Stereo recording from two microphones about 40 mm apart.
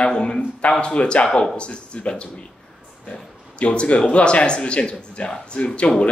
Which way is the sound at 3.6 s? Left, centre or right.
Left.